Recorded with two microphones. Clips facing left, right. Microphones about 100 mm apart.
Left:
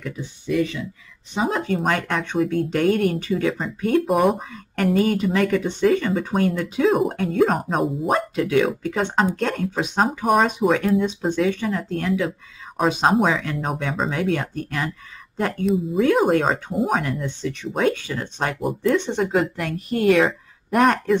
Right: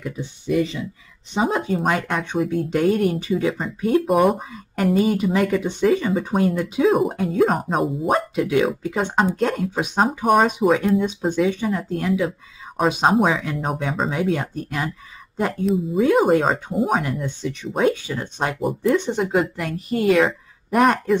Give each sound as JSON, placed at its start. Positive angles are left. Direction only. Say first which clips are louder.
{"t": 0.0, "sound": "speech", "louder": "right 2 dB", "side_deg": -20}
{"t": 1.4, "sound": "speech", "louder": "right 1 dB", "side_deg": -5}